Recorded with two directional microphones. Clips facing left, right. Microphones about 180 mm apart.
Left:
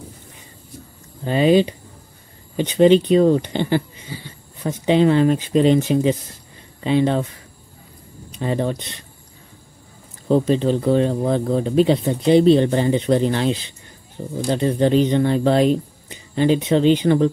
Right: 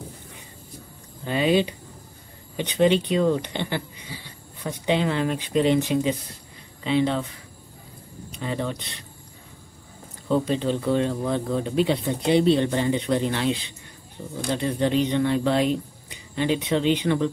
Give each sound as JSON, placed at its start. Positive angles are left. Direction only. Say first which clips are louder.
{"t": 1.2, "sound": "speech", "louder": "left 6 dB", "side_deg": 35}
{"t": 4.8, "sound": "speech", "louder": "left 8 dB", "side_deg": 35}
{"t": 6.8, "sound": "speech", "louder": "left 4 dB", "side_deg": 45}
{"t": 8.4, "sound": "speech", "louder": "left 6 dB", "side_deg": 40}
{"t": 10.2, "sound": "speech", "louder": "left 6 dB", "side_deg": 30}